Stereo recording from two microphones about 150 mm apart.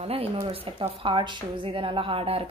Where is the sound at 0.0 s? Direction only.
40° right (ahead or behind).